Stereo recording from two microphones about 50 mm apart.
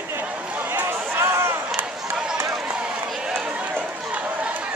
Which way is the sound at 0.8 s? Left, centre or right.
Right.